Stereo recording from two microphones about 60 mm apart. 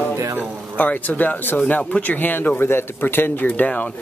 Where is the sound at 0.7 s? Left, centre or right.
Left.